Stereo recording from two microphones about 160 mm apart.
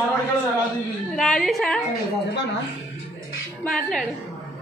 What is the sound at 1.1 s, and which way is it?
Speech, 5° left (ahead or behind).